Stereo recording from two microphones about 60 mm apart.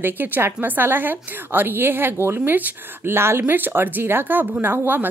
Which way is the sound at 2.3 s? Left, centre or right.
Right.